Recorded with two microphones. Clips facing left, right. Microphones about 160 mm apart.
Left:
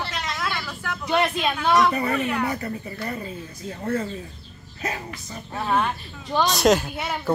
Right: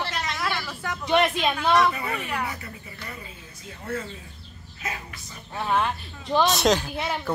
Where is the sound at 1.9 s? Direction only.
40° left (ahead or behind).